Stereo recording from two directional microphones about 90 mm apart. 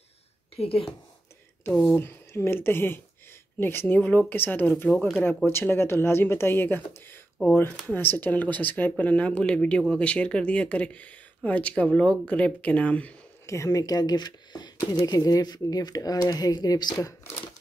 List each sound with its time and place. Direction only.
0.6 s a woman's voice: 90° left
2.0 s speech: 25° left (ahead or behind)
5.5 s speech: 25° left (ahead or behind)
13.5 s speech: 35° left (ahead or behind)